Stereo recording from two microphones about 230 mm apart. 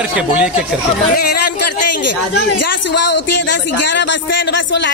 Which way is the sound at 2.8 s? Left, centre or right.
Left.